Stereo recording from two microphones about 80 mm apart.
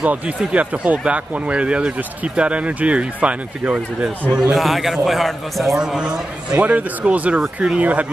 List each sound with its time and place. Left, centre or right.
0.0 s speech: centre
4.5 s a man's voice: centre